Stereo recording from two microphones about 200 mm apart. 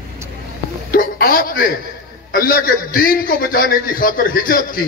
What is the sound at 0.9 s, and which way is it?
A man's voice, 45° left (ahead or behind).